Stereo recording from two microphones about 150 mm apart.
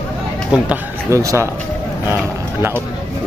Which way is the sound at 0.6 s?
20° right (ahead or behind).